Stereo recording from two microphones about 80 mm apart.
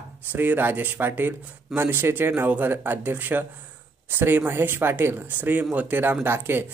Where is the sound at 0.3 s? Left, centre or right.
Right.